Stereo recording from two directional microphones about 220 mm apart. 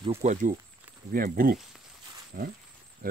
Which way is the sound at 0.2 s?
35° right (ahead or behind).